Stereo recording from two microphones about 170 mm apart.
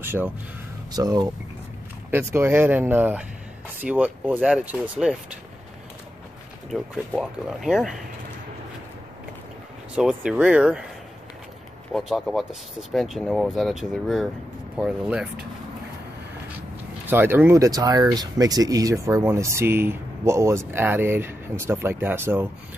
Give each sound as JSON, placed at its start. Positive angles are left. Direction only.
{"t": 0.0, "sound": "speech", "side_deg": -10}
{"t": 0.9, "sound": "speech", "side_deg": -20}
{"t": 7.1, "sound": "speech", "side_deg": -5}
{"t": 9.9, "sound": "speech", "side_deg": -5}
{"t": 11.9, "sound": "speech", "side_deg": 0}
{"t": 17.0, "sound": "speech", "side_deg": -10}